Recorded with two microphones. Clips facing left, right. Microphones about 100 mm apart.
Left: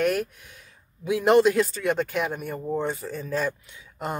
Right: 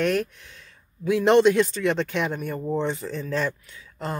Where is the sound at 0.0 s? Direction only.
10° left (ahead or behind).